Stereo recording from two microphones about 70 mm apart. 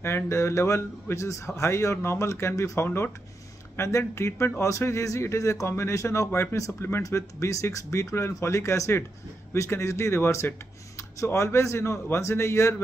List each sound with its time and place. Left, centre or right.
0.0 s a man's voice: left